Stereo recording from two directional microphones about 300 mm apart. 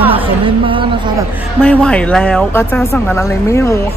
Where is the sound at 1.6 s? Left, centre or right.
Centre.